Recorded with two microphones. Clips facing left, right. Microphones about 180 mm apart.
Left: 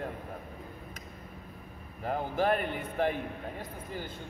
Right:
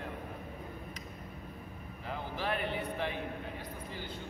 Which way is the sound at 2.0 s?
50° left (ahead or behind).